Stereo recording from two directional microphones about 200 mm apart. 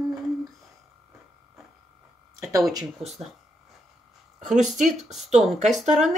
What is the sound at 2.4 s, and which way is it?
Speech, 15° right (ahead or behind).